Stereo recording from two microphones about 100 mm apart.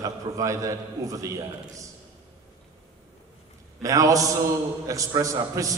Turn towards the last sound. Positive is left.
turn(degrees=-35)  # may be behind; listen again after turning